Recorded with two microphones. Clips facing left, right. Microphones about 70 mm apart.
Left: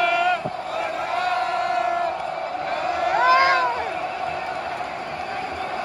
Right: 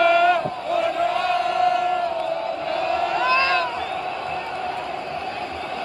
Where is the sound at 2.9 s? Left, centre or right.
Left.